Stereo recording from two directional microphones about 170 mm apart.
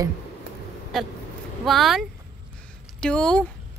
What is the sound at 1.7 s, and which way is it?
Speech, centre (ahead or behind).